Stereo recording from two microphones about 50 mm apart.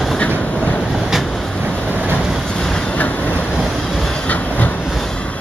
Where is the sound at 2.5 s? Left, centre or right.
Centre.